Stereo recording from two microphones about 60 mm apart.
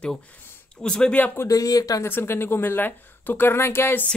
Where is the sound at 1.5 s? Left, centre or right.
Left.